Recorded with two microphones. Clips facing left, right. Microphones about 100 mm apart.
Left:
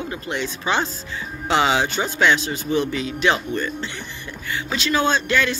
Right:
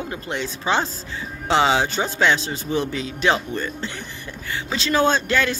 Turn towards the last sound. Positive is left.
turn(degrees=-40)  # may be behind; listen again after turning